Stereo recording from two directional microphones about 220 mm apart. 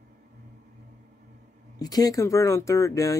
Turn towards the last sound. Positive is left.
turn(degrees=15)  # may be behind; listen again after turning